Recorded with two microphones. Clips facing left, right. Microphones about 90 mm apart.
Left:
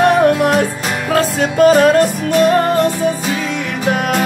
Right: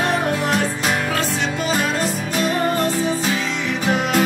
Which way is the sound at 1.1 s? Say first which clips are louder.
Left 7 dB; 45° left (ahead or behind).